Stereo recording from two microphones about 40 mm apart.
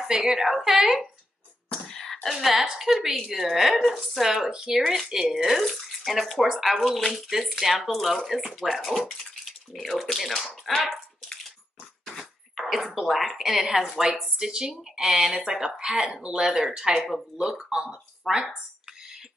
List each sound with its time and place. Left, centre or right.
0.0 s speech: centre
1.7 s whispering: centre
2.6 s speech: centre
4.3 s speech: centre
4.7 s speech: centre
12.5 s speech: centre
18.3 s speech: centre